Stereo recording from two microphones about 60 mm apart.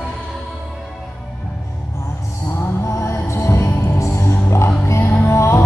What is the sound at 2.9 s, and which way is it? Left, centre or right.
Music, left.